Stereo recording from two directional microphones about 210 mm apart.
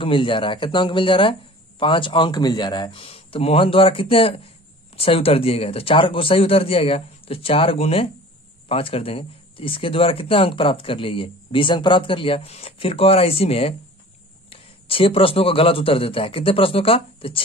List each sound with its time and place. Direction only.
0.0 s speech: 25° left (ahead or behind)